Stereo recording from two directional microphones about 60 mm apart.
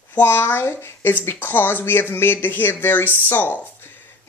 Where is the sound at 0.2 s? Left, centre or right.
Left.